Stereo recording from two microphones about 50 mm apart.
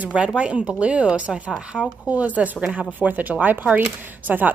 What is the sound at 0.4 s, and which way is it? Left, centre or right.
A woman's voice, right.